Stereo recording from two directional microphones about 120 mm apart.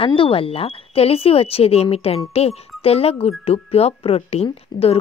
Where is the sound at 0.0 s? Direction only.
50° left (ahead or behind).